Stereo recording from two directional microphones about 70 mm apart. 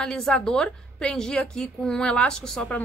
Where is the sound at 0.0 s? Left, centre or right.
Centre.